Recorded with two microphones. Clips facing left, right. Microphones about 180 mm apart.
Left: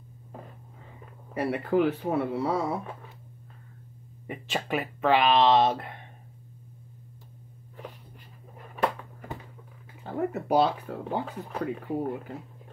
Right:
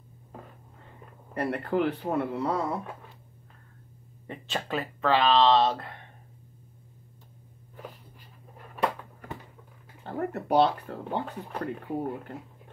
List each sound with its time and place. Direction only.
1.3 s speech: 5° left (ahead or behind)
4.3 s speech: 15° left (ahead or behind)
8.5 s a sound: centre (ahead or behind)
10.0 s speech: 5° left (ahead or behind)